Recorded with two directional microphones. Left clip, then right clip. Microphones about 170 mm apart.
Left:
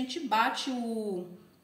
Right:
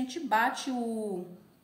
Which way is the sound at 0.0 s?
15° right (ahead or behind).